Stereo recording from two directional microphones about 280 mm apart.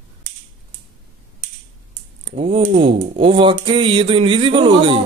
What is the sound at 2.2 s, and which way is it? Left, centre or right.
Speech, centre.